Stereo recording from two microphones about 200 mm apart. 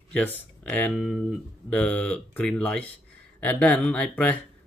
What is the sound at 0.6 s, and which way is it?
Speech, 5° left (ahead or behind).